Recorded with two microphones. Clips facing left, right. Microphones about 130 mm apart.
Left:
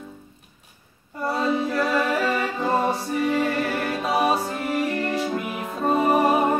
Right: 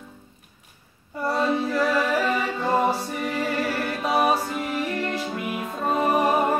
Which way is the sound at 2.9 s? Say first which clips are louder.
Left 4 dB; centre (ahead or behind).